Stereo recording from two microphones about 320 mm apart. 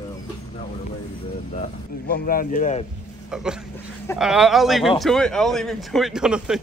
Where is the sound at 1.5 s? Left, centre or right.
Left.